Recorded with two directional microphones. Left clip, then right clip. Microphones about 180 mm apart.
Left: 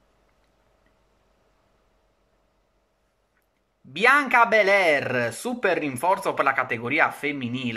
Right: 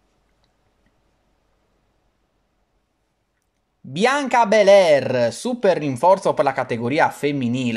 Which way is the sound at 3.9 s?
35° right (ahead or behind).